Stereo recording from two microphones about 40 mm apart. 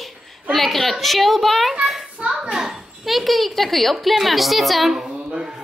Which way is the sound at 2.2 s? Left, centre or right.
Right.